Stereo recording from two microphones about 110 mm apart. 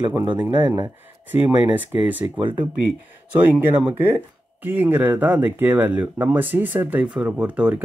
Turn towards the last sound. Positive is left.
turn(degrees=-10)  # may be behind; listen again after turning